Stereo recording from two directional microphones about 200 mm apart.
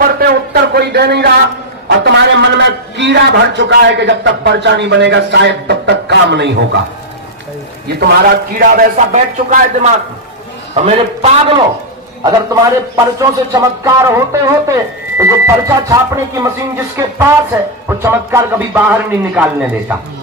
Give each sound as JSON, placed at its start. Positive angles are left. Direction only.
{"t": 0.0, "sound": "a man's voice", "side_deg": -50}
{"t": 8.0, "sound": "a man's voice", "side_deg": -50}
{"t": 12.2, "sound": "a man's voice", "side_deg": -15}